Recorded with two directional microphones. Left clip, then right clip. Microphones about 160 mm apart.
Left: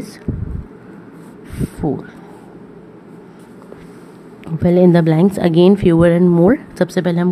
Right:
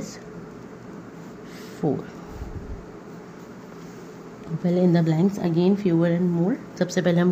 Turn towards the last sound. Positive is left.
turn(degrees=25)  # may be behind; listen again after turning